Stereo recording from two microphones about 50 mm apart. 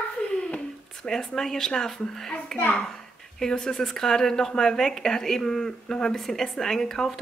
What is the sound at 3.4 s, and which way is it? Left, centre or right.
Speech, centre.